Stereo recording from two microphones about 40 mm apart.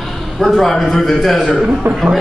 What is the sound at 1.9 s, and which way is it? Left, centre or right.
Speech, right.